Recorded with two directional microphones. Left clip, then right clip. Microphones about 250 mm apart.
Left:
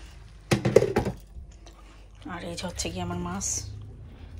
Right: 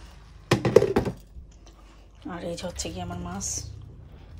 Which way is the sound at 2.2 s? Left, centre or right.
Centre.